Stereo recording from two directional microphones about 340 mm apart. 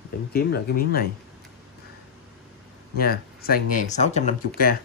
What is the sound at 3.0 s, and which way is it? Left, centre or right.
Speech, left.